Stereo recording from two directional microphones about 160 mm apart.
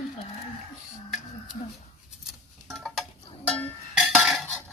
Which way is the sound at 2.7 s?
Centre (ahead or behind).